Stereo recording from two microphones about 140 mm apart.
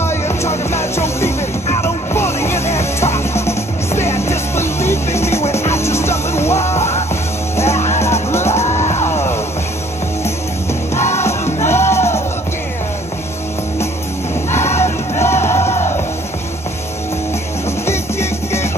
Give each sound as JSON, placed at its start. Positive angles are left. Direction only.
{"t": 0.0, "sound": "music", "side_deg": 20}
{"t": 8.8, "sound": "music", "side_deg": 55}
{"t": 11.6, "sound": "music", "side_deg": 20}
{"t": 14.5, "sound": "music", "side_deg": 20}
{"t": 17.8, "sound": "music", "side_deg": 20}